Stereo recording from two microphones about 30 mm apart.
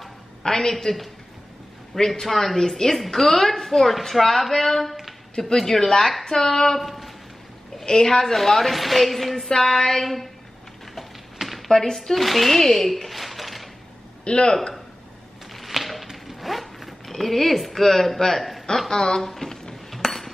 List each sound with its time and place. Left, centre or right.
0.4 s a woman's voice: left
2.2 s a woman's voice: centre
6.8 s speech: centre
7.9 s a woman's voice: centre
9.5 s a woman's voice: left
11.4 s a sound: centre
11.7 s speech: centre
14.2 s a woman's voice: left
15.5 s a sound: centre
16.3 s zipper: centre
17.1 s a woman's voice: centre
18.9 s a woman's voice: left
20.0 s hammer: centre